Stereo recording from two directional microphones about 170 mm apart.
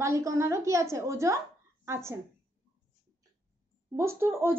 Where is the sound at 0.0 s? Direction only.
20° right (ahead or behind).